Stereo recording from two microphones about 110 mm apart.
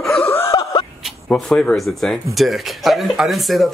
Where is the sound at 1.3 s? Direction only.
10° left (ahead or behind).